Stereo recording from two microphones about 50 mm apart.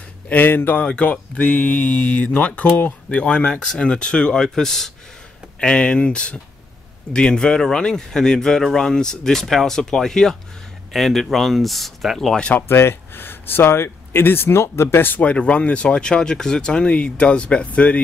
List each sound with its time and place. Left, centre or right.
0.3 s speech: left
0.8 s speech: left; by 12.4 s centre
12.6 s speech: left
15.0 s speech: left